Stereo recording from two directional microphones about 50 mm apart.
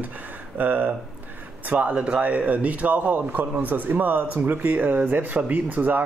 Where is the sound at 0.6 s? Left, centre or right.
Right.